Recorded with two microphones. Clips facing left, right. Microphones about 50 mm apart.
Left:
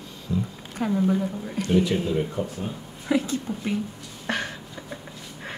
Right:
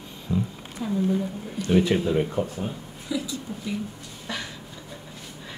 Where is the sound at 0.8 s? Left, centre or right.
Left.